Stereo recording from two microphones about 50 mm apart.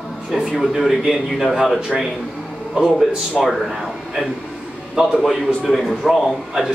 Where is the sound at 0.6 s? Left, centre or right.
Centre.